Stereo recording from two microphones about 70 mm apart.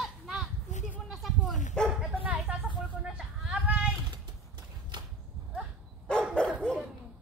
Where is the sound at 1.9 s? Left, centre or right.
Centre.